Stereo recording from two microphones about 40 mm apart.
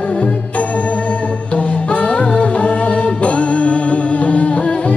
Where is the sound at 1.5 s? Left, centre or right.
Left.